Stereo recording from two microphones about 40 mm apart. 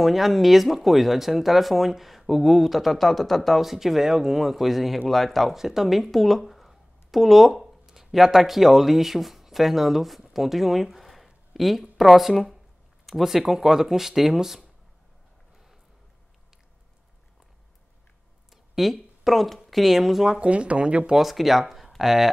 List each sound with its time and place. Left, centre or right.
0.0 s speech: centre
5.6 s speech: centre
18.8 s speech: centre
20.3 s speech: right
21.1 s speech: centre